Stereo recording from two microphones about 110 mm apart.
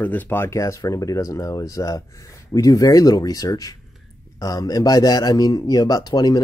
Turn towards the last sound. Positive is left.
turn(degrees=40)  # may be behind; listen again after turning